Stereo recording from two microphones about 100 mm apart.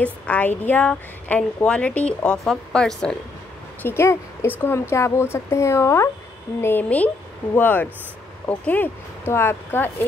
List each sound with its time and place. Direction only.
0.0 s a woman's voice: 15° left (ahead or behind)
3.8 s a woman's voice: 25° left (ahead or behind)